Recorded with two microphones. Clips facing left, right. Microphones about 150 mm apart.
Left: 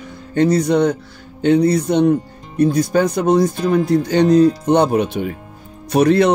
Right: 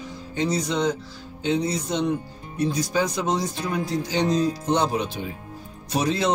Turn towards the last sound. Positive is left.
turn(degrees=60)  # may be behind; listen again after turning